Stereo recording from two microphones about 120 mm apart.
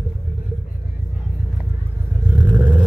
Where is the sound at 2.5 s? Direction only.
15° right (ahead or behind).